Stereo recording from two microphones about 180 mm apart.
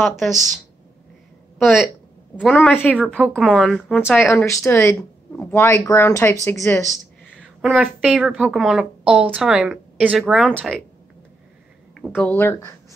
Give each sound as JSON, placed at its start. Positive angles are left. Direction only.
{"t": 0.2, "sound": "a woman's voice", "side_deg": 0}
{"t": 2.3, "sound": "speech", "side_deg": 5}
{"t": 3.2, "sound": "a woman's voice", "side_deg": -5}
{"t": 7.6, "sound": "a woman's voice", "side_deg": -5}
{"t": 11.9, "sound": "speech", "side_deg": 0}
{"t": 12.3, "sound": "speech", "side_deg": 10}